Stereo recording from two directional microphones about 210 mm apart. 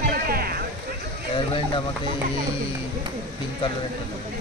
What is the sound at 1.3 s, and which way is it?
Speech, 20° left (ahead or behind).